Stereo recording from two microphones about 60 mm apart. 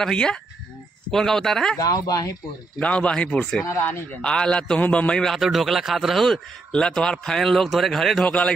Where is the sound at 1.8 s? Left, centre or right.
Left.